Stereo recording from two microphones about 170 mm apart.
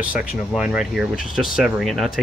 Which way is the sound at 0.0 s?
5° right (ahead or behind).